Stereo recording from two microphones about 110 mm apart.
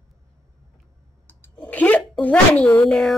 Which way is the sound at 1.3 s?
15° left (ahead or behind).